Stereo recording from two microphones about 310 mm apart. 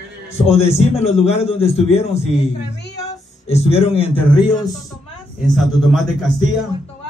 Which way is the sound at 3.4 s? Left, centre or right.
Centre.